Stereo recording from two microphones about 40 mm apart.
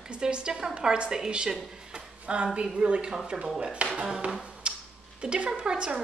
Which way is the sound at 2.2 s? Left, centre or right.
Right.